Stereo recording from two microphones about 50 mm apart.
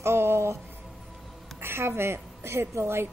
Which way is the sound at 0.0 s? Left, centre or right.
Right.